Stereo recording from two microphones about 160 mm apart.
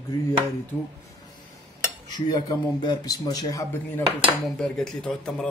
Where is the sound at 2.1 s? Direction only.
25° left (ahead or behind).